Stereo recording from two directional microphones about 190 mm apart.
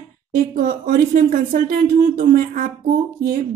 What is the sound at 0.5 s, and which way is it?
Speech, 45° right (ahead or behind).